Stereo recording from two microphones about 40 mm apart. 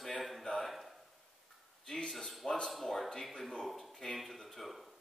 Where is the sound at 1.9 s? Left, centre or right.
Left.